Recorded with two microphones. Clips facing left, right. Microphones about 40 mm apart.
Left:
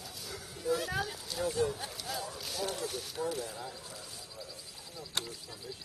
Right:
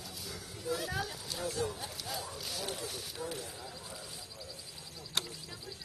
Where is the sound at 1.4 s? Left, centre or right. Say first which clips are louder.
Left 5 dB; left.